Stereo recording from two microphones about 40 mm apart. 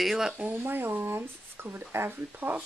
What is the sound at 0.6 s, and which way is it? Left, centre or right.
Speech, right.